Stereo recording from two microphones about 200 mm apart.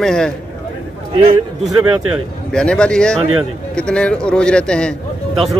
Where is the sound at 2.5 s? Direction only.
5° left (ahead or behind).